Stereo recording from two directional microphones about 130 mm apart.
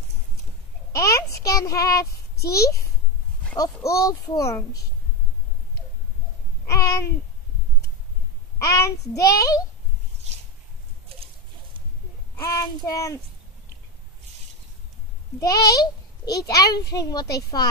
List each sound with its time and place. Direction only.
0.9 s a child's voice: 25° left (ahead or behind)
6.7 s a child's voice: 25° left (ahead or behind)
8.5 s a child's voice: 25° left (ahead or behind)
11.1 s a sound: 50° right (ahead or behind)
12.8 s a child's voice: 25° left (ahead or behind)
15.4 s a child's voice: 25° left (ahead or behind)